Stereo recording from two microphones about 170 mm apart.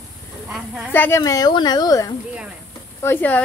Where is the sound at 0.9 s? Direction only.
15° left (ahead or behind).